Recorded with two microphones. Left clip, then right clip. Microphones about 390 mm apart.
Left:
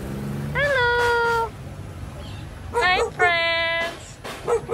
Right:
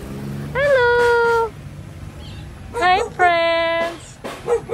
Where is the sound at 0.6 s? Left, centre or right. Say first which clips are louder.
Right 5 dB; centre.